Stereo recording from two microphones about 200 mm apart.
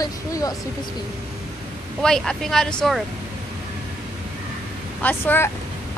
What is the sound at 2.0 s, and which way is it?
Speech, 5° left (ahead or behind).